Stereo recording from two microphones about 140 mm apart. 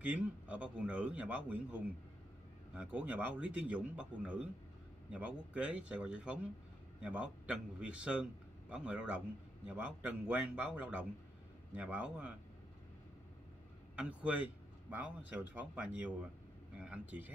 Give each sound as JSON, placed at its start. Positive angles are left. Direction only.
{"t": 0.0, "sound": "a man's voice", "side_deg": -10}
{"t": 13.9, "sound": "a man's voice", "side_deg": -10}